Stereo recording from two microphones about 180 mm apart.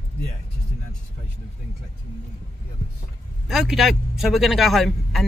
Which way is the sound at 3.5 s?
Centre (ahead or behind).